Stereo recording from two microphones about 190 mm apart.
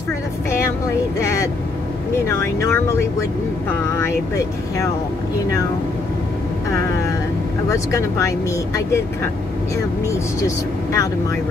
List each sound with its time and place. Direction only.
2.2 s speech: 15° left (ahead or behind)
7.7 s speech: 15° left (ahead or behind)
10.0 s speech: 15° left (ahead or behind)